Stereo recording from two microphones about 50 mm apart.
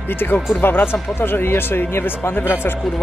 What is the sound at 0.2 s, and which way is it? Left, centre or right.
Speech, left.